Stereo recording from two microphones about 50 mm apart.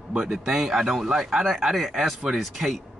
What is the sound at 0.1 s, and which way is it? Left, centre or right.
Speech, centre.